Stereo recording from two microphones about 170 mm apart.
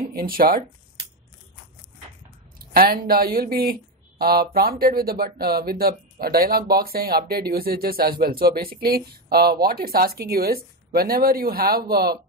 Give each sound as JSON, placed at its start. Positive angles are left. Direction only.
{"t": 0.0, "sound": "speech", "side_deg": -60}
{"t": 2.6, "sound": "speech", "side_deg": -60}